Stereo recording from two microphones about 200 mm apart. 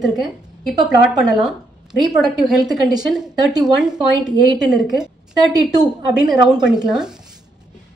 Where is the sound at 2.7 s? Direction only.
20° right (ahead or behind).